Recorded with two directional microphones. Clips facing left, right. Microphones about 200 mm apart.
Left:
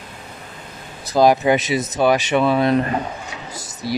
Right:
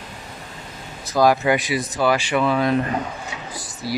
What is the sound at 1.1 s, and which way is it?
Speech, 20° left (ahead or behind).